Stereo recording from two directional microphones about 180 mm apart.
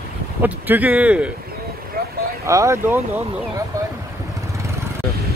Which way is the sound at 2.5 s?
15° right (ahead or behind).